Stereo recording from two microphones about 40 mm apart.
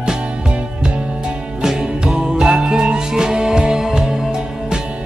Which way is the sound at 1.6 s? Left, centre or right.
Centre.